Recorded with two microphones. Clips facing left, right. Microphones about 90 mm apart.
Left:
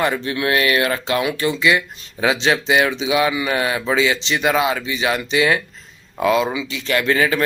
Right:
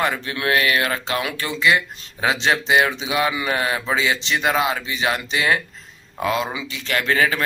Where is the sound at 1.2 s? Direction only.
20° left (ahead or behind).